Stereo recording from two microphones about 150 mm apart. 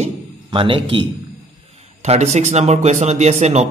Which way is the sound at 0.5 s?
35° right (ahead or behind).